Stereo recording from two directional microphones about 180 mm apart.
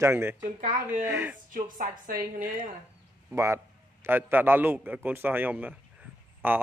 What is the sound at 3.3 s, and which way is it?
A man's voice, 15° right (ahead or behind).